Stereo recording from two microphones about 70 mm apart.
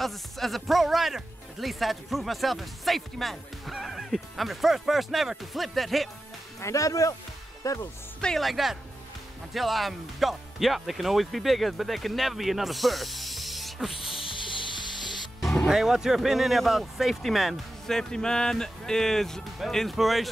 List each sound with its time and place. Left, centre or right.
0.0 s speech: centre
6.6 s speech: left
8.4 s speech: centre
15.4 s speech: centre